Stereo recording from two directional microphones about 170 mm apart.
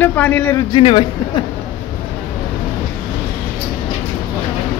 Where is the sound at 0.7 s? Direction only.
35° left (ahead or behind).